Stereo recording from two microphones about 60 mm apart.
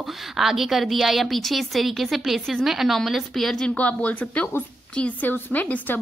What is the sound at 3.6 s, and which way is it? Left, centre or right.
A woman's voice, left.